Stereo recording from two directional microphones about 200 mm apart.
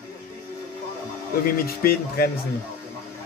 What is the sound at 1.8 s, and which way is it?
Speech, 50° left (ahead or behind).